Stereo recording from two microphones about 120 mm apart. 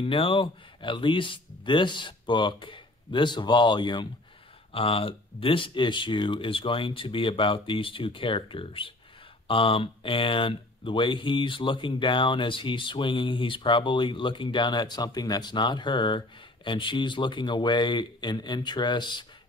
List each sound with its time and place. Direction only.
0.0 s speech: 50° left (ahead or behind)
4.7 s speech: 50° left (ahead or behind)